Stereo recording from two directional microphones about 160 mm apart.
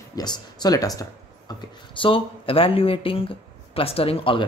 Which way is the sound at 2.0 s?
35° left (ahead or behind).